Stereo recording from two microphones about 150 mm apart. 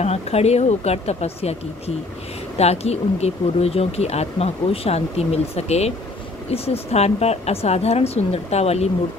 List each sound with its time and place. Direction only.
0.0 s speech: 45° left (ahead or behind)